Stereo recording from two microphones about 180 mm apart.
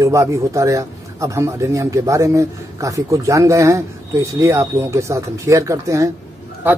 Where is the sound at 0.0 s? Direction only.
15° right (ahead or behind).